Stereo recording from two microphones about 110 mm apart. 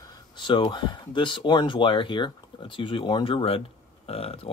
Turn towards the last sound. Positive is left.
turn(degrees=60)  # may be behind; listen again after turning